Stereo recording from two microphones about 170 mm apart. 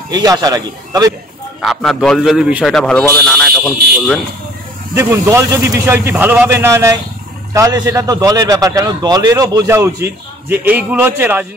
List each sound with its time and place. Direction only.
0.1 s a man's voice: 20° right (ahead or behind)
1.6 s speech: centre (ahead or behind)
4.9 s a man's voice: 15° right (ahead or behind)